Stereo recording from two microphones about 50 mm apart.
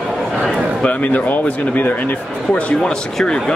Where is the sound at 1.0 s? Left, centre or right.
Left.